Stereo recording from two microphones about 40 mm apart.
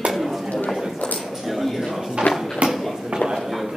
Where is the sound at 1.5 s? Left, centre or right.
Centre.